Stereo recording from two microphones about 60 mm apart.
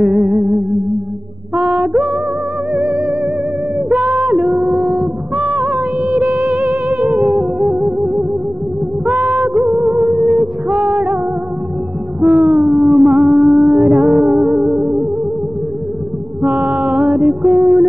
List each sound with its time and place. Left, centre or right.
0.0 s music: centre
1.7 s music: centre
3.9 s a sound: centre
4.9 s music: centre
7.2 s music: centre
12.2 s a sound: centre
16.7 s music: centre